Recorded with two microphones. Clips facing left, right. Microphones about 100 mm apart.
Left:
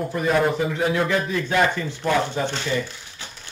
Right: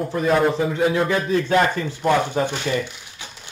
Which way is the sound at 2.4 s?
15° right (ahead or behind).